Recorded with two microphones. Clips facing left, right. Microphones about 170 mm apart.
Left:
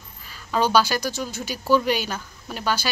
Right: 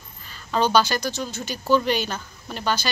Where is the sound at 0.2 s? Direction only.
5° left (ahead or behind).